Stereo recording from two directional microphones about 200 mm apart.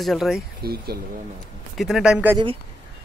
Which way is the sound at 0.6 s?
50° right (ahead or behind).